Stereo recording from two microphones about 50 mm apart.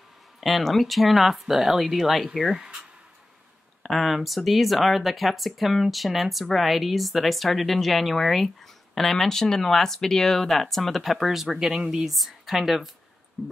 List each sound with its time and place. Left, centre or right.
0.4 s speech: centre
2.6 s a sound: centre
3.8 s speech: centre
12.1 s speech: centre